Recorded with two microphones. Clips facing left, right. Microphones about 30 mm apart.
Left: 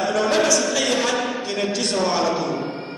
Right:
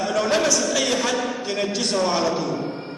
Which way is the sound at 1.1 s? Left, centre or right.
Centre.